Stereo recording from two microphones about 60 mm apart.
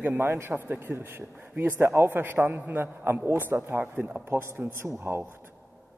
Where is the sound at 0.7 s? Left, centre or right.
Right.